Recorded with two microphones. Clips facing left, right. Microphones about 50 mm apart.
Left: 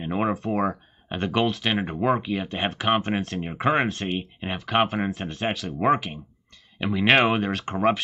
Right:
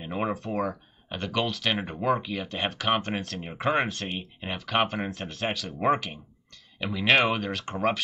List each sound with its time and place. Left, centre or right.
0.0 s speech: centre
0.3 s speech: centre
0.6 s a sound: left
1.5 s speech: centre
3.2 s speech: centre
3.4 s speech: centre
6.8 s speech: centre
7.5 s speech: centre